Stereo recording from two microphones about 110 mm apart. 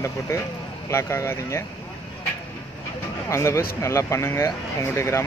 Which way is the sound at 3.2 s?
25° left (ahead or behind).